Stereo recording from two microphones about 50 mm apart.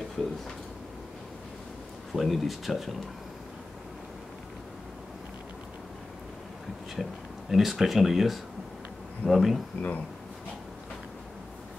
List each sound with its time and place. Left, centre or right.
2.1 s speech: centre
7.0 s speech: centre
9.8 s speech: left